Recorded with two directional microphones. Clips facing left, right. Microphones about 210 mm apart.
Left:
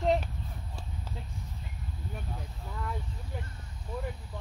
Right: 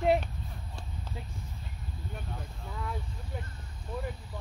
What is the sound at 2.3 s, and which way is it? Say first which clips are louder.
Speech: even; centre (ahead or behind).